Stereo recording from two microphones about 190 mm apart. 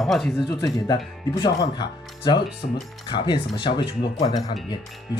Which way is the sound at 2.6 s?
40° left (ahead or behind).